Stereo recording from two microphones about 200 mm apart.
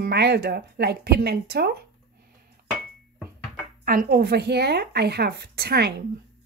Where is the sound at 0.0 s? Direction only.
55° right (ahead or behind).